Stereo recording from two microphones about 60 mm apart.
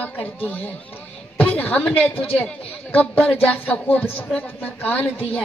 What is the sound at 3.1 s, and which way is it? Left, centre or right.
A woman's voice, left.